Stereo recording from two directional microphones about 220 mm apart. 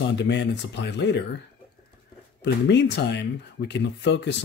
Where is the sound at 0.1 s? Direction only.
50° left (ahead or behind).